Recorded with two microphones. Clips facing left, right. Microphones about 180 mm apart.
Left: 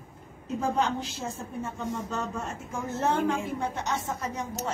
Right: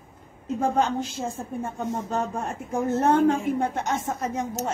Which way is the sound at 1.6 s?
50° right (ahead or behind).